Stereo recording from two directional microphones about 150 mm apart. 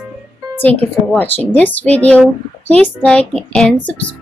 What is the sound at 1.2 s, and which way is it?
Speech, 10° left (ahead or behind).